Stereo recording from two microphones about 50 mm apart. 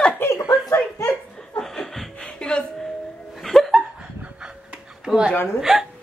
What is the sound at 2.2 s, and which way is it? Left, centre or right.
Music, centre.